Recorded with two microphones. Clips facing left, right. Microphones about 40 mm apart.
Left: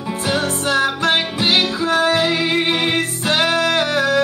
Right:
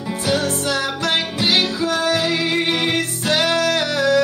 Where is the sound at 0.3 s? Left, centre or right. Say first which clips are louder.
Left 1 dB; left.